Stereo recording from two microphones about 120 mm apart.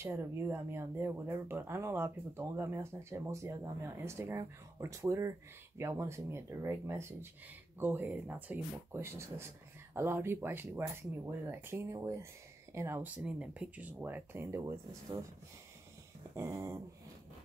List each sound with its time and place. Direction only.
0.0 s speech: 20° right (ahead or behind)
13.2 s speech: 10° right (ahead or behind); by 15.2 s 25° right (ahead or behind)
16.3 s speech: 20° right (ahead or behind)